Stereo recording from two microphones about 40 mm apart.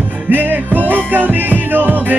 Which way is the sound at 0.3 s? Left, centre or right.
Right.